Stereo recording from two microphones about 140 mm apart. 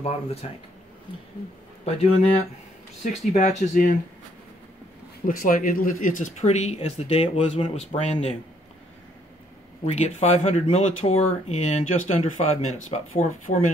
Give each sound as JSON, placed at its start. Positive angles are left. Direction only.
{"t": 0.0, "sound": "speech", "side_deg": 45}
{"t": 1.9, "sound": "speech", "side_deg": 45}
{"t": 3.0, "sound": "speech", "side_deg": 60}
{"t": 5.2, "sound": "speech", "side_deg": 75}
{"t": 9.8, "sound": "speech", "side_deg": 50}